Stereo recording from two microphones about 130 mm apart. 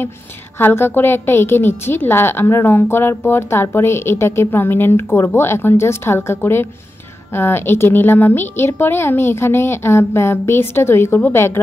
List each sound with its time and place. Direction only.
0.6 s a woman's voice: 15° left (ahead or behind)